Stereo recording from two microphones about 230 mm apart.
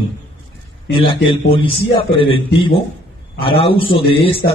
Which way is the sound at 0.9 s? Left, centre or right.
Left.